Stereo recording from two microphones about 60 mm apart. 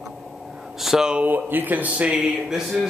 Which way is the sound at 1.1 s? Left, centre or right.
Right.